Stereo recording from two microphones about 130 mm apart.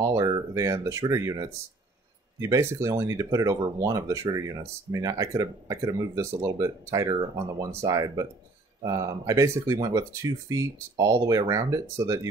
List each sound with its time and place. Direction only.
0.0 s speech: 30° right (ahead or behind)